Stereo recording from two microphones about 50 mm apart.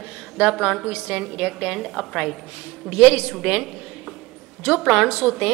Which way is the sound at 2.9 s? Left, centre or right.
Right.